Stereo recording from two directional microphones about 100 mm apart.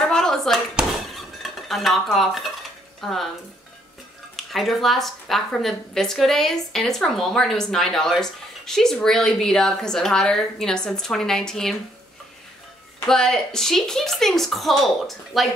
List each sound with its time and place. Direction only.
0.0 s a sound: 5° left (ahead or behind)
0.7 s dishes: centre (ahead or behind)
3.0 s speech: centre (ahead or behind)
4.4 s a woman's voice: centre (ahead or behind)
13.0 s a woman's voice: 5° left (ahead or behind)